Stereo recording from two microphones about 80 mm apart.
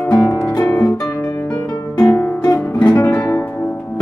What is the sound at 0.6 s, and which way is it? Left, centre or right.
Music, left.